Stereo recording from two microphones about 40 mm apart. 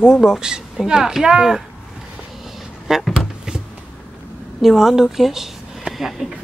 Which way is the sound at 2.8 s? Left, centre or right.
Centre.